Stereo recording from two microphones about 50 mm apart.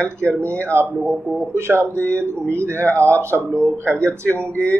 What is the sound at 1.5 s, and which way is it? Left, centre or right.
Speech, right.